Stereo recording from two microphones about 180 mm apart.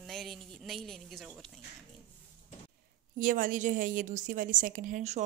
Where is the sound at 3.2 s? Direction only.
50° right (ahead or behind).